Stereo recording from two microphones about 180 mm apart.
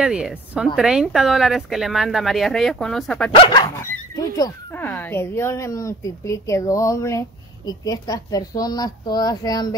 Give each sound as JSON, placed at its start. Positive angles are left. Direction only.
{"t": 0.0, "sound": "speech", "side_deg": -5}
{"t": 3.3, "sound": "a woman's voice", "side_deg": 25}